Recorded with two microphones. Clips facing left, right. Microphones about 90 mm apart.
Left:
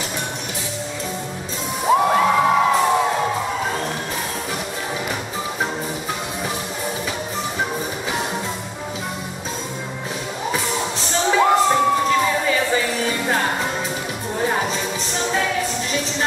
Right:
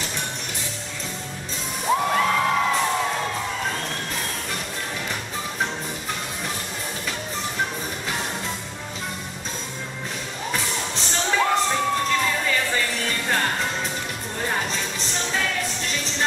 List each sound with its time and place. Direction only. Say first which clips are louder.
2.0 s music: left 5 dB; 20° left (ahead or behind)
11.2 s crowd: left 6 dB; 10° left (ahead or behind)
14.4 s music: left 5 dB; 10° left (ahead or behind)